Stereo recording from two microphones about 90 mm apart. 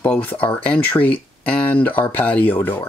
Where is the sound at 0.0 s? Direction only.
20° left (ahead or behind).